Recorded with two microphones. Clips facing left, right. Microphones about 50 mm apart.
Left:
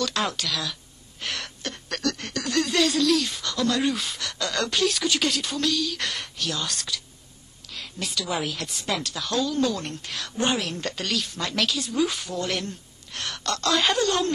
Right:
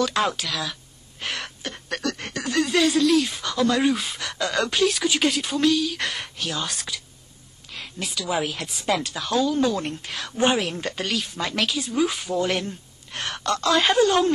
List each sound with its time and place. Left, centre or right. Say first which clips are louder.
0.2 s speech: right 3 dB; centre
1.2 s a sound: right 1 dB; centre
1.9 s speech: right 1 dB; centre
8.0 s a woman's voice: right 3 dB; centre
8.5 s speech: right 4 dB; centre
13.5 s speech: right 3 dB; centre